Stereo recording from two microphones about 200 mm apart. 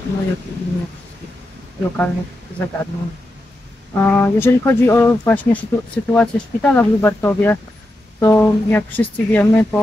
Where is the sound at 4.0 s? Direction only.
10° left (ahead or behind).